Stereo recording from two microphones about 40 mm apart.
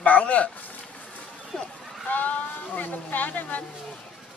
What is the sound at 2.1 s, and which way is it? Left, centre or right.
Speech, left.